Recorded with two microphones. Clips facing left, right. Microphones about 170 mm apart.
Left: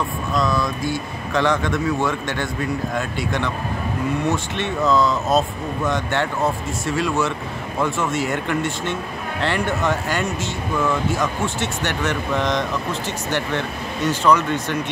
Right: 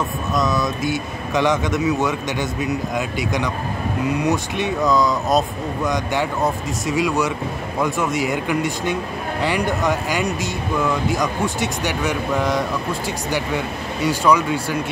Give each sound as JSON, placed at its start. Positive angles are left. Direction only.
{"t": 0.3, "sound": "speech", "side_deg": -20}
{"t": 4.2, "sound": "speech", "side_deg": -15}